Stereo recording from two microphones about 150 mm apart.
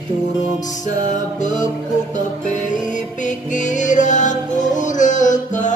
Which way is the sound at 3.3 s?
55° left (ahead or behind).